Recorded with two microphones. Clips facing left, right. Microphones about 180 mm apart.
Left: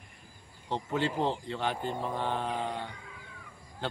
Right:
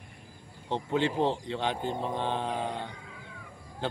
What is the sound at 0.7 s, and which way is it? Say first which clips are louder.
Speech: right 3 dB; 20° right (ahead or behind).